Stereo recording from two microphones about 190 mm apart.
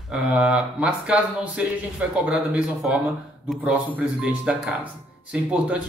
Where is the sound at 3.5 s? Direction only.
5° right (ahead or behind).